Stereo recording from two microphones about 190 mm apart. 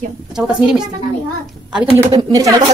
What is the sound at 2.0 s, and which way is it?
Speech, 20° right (ahead or behind).